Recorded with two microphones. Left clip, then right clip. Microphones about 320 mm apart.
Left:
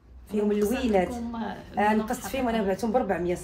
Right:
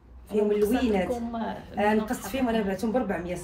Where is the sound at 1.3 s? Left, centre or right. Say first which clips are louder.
Right 2 dB; centre.